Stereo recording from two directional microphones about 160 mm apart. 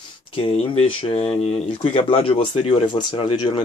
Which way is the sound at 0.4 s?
35° left (ahead or behind).